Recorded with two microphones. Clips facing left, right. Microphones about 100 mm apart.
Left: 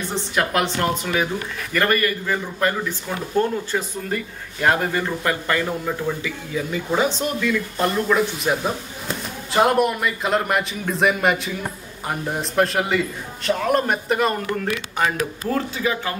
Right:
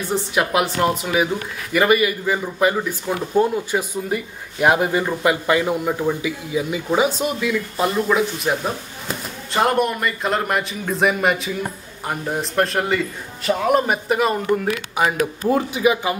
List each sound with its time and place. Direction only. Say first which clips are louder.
0.1 s a man's voice: right 3 dB; 5° right (ahead or behind)